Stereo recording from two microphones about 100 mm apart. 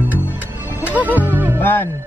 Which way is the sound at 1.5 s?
20° left (ahead or behind).